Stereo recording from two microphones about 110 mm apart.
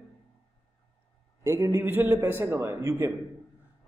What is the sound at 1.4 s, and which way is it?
A man's voice, 30° right (ahead or behind).